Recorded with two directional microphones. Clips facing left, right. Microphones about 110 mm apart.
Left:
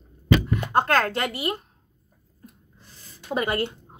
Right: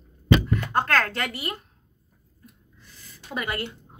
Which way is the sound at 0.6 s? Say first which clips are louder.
Left 3 dB; 20° left (ahead or behind).